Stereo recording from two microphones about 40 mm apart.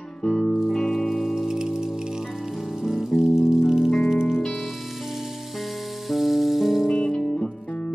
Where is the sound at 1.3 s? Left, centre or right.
Centre.